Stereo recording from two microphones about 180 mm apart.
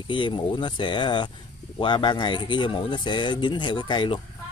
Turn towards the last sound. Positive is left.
turn(degrees=25)  # may be behind; listen again after turning